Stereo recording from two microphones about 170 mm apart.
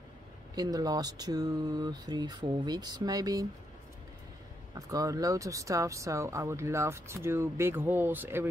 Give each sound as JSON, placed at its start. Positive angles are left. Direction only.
{"t": 0.6, "sound": "speech", "side_deg": -20}
{"t": 4.7, "sound": "speech", "side_deg": -20}